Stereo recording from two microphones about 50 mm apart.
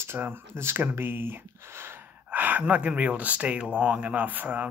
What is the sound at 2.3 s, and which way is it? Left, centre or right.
Speech, right.